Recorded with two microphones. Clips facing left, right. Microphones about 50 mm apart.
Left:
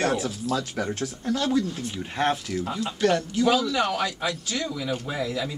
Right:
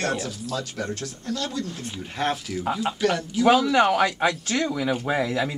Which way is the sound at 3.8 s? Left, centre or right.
Right.